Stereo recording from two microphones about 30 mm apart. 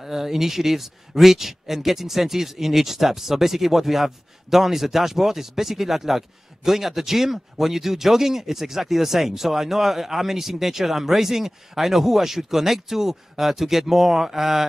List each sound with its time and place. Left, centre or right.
0.0 s speech: centre